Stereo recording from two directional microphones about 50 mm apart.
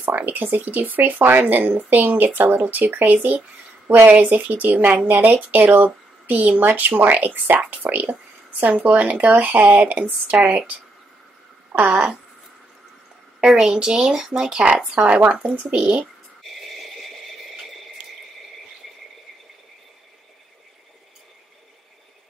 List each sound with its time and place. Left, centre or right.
0.0 s a woman's voice: right
11.7 s speech: right
13.4 s speech: centre
15.0 s speech: right
18.0 s a sound: right